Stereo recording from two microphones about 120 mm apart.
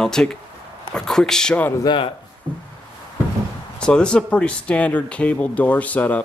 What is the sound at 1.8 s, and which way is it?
Speech, 45° left (ahead or behind).